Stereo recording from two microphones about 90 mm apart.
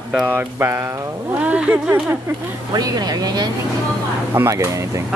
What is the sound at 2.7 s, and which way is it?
Speech, 45° right (ahead or behind).